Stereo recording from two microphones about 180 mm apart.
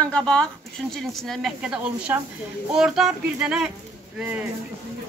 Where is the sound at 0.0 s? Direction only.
5° left (ahead or behind).